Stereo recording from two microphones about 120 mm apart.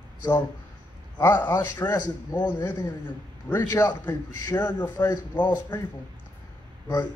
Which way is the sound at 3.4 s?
20° left (ahead or behind).